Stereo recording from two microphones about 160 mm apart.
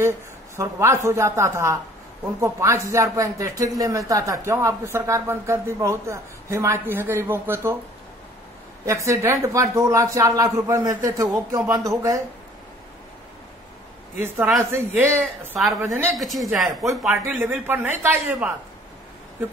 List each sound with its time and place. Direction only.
0.6 s a woman's voice: 15° right (ahead or behind)
8.8 s speech: 20° right (ahead or behind)
14.1 s a woman's voice: 15° right (ahead or behind)
16.2 s speech: centre (ahead or behind)
17.1 s a woman's voice: 15° right (ahead or behind)